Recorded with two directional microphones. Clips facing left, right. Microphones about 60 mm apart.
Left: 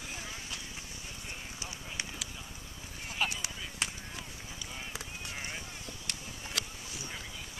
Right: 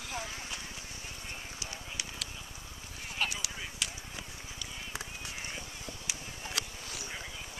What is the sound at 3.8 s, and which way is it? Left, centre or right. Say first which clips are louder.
Chop: left 3 dB; left.